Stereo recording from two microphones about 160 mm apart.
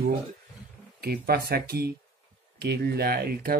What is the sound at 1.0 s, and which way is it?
Speech, 75° right (ahead or behind).